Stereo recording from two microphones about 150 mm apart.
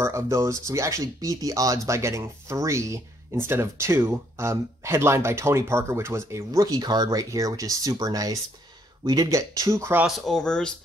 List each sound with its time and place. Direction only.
0.0 s speech: 20° right (ahead or behind)
10.0 s speech: centre (ahead or behind)